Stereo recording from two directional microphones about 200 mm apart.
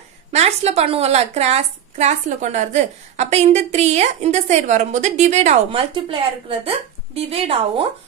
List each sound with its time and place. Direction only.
0.3 s a woman's voice: 35° right (ahead or behind)
7.2 s a woman's voice: 30° right (ahead or behind)